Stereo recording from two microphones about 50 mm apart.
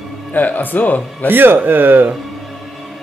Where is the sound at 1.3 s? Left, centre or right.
Right.